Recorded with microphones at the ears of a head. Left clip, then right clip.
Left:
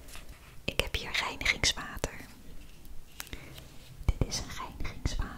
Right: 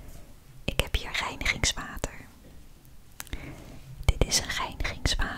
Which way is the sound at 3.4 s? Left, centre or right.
Right.